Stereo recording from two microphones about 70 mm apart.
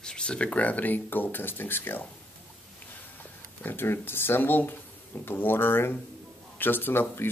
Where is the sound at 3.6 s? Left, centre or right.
Left.